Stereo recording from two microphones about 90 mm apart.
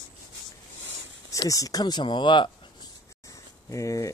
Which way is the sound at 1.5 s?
40° left (ahead or behind).